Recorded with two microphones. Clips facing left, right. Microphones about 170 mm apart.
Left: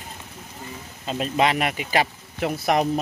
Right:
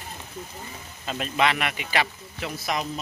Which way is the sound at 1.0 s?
35° left (ahead or behind).